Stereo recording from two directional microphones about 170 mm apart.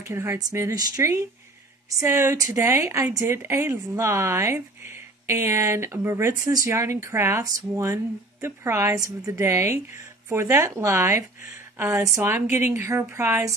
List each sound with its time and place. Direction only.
0.0 s a woman's voice: 15° right (ahead or behind)